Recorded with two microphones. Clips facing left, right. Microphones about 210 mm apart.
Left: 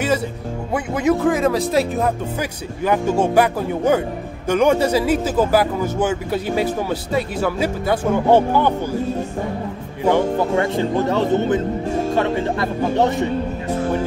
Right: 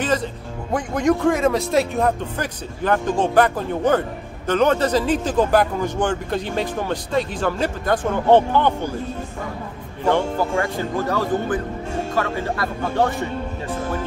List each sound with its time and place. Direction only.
0.7 s speech: 5° left (ahead or behind)
10.5 s speech: 20° left (ahead or behind)